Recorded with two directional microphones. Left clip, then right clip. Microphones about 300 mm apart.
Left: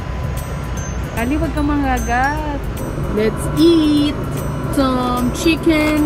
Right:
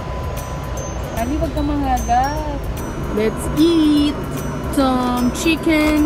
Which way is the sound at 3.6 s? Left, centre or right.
Centre.